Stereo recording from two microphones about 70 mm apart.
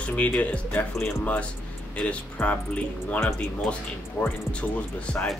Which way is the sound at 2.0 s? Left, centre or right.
Centre.